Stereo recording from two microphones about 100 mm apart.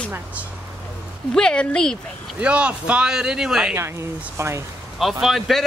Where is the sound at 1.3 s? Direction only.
5° left (ahead or behind).